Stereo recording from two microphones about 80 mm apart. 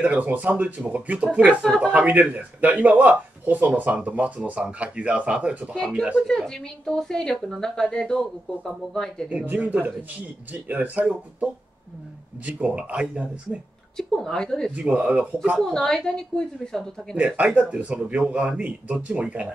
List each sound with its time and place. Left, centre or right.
0.0 s speech: right
1.6 s speech: centre
2.0 s speech: right
6.2 s a woman's voice: centre
9.5 s speech: centre
13.9 s a woman's voice: centre
14.8 s speech: centre
15.6 s a woman's voice: centre
17.6 s speech: centre